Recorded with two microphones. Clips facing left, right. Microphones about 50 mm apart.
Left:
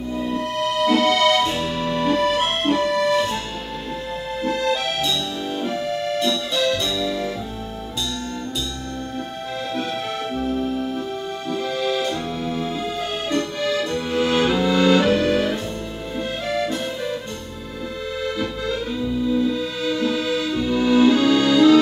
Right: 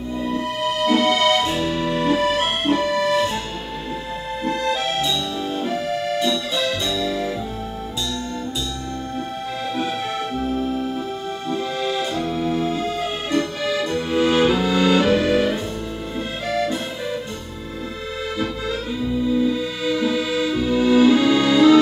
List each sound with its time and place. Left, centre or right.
0.1 s music: centre
4.5 s music: centre
10.4 s organ: centre
11.4 s music: centre
18.4 s music: centre